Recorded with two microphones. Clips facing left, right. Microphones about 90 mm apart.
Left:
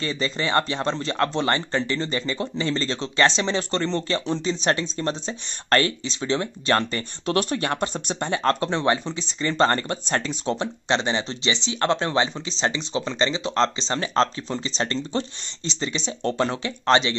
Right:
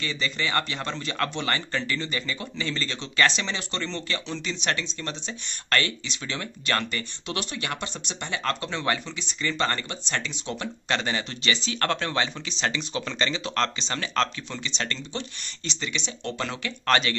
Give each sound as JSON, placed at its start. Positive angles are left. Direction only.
{"t": 0.0, "sound": "speech", "side_deg": 35}